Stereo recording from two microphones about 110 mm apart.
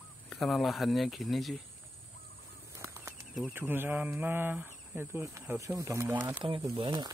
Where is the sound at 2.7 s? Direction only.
20° right (ahead or behind).